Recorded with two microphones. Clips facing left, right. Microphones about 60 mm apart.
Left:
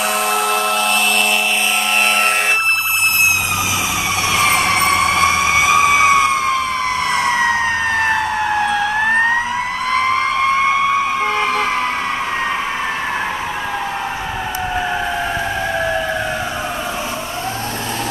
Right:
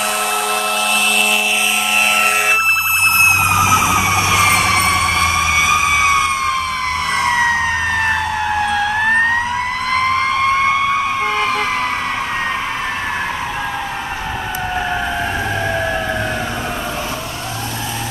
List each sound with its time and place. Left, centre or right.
0.3 s a sound: centre
3.5 s emergency vehicle: right
3.9 s emergency vehicle: centre
7.1 s fire engine: centre
9.8 s emergency vehicle: centre